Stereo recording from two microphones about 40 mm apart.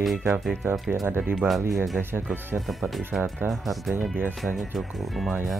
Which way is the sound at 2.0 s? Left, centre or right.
Right.